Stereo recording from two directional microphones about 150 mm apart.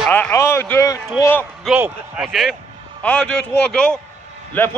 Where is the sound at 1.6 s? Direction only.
10° right (ahead or behind); by 4.7 s 15° left (ahead or behind).